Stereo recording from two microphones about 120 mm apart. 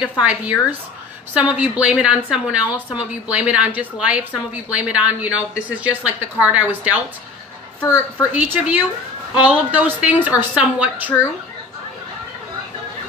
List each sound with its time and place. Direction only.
0.2 s a woman's voice: 10° right (ahead or behind)
7.8 s a woman's voice: 25° left (ahead or behind)
8.3 s a woman's voice: 15° right (ahead or behind)